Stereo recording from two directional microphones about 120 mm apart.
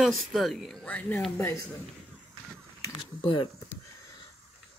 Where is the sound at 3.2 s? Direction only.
45° left (ahead or behind).